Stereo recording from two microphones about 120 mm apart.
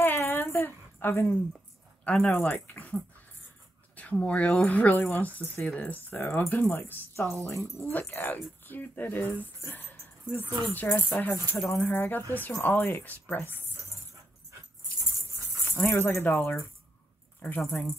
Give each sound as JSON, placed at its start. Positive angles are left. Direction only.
{"t": 0.0, "sound": "a sound", "side_deg": 20}
{"t": 2.0, "sound": "speech", "side_deg": 10}
{"t": 15.7, "sound": "speech", "side_deg": 20}